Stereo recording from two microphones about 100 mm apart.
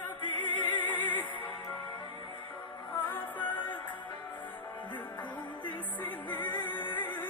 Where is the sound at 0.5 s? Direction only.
55° left (ahead or behind).